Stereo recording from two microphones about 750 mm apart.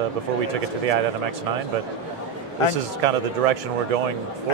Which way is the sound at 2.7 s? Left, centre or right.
Right.